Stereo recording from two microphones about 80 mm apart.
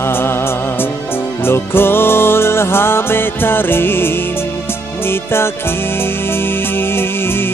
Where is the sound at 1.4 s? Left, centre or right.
Left.